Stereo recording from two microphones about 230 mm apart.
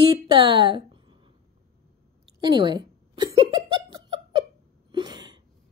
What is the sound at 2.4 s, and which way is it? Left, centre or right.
Giggle, centre.